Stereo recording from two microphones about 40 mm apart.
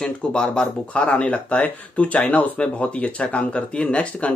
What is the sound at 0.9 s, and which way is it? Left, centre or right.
Speech, left.